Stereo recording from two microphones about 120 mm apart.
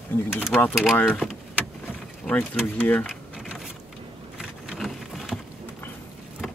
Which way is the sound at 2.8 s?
15° left (ahead or behind).